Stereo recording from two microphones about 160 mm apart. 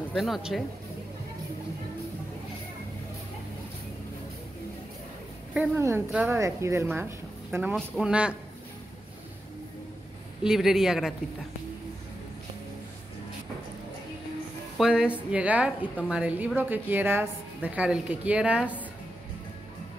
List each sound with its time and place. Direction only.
0.1 s speech: centre (ahead or behind)
5.8 s a woman's voice: 15° right (ahead or behind)
10.4 s speech: 5° right (ahead or behind)
14.8 s a woman's voice: 5° right (ahead or behind)